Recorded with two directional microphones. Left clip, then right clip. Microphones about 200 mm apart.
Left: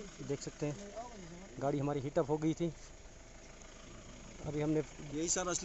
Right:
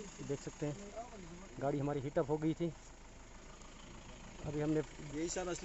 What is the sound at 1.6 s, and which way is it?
Speech, centre (ahead or behind).